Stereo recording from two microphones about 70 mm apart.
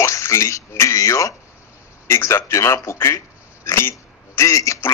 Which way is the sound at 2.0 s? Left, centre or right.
Left.